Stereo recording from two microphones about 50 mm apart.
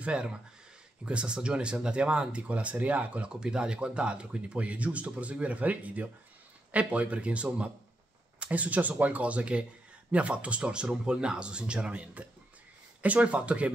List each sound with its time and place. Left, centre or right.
0.0 s speech: right